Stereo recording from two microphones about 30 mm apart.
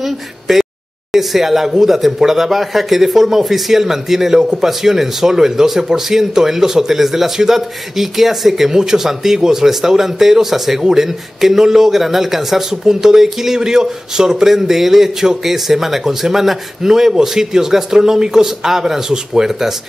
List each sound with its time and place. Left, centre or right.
0.0 s a man's voice: centre